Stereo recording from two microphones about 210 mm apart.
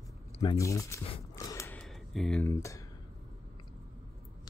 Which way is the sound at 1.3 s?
15° left (ahead or behind).